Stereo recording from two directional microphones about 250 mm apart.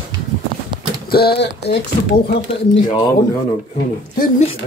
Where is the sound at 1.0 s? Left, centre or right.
Left.